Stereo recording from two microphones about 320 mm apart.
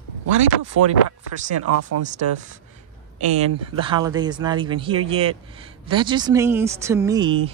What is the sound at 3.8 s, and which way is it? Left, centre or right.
Speech, centre.